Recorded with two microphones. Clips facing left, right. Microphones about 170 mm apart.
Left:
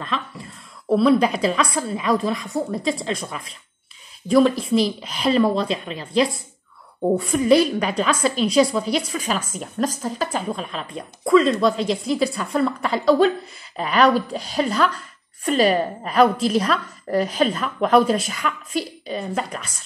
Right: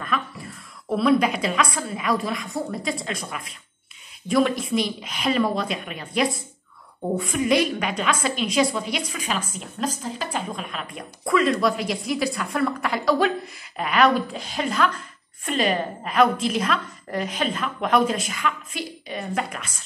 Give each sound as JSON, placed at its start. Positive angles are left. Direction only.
{"t": 0.8, "sound": "a woman's voice", "side_deg": 30}